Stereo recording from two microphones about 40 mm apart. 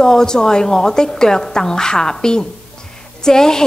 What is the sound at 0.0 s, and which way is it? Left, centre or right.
A woman's voice, centre.